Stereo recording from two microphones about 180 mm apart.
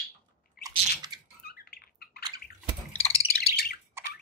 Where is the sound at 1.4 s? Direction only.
60° left (ahead or behind).